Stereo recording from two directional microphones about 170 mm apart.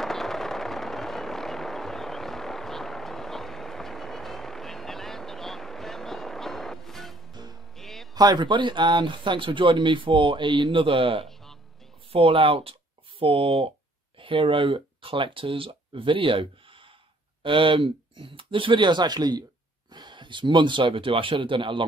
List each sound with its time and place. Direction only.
0.0 s vehicle: centre (ahead or behind)
7.7 s music: centre (ahead or behind)
8.1 s speech: 25° right (ahead or behind)